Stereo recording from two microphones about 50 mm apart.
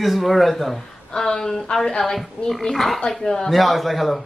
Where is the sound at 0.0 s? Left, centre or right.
Centre.